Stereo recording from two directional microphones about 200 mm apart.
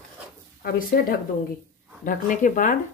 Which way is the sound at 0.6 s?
50° left (ahead or behind).